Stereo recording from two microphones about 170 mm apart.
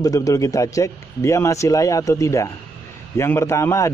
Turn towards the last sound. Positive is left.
turn(degrees=15)  # may be behind; listen again after turning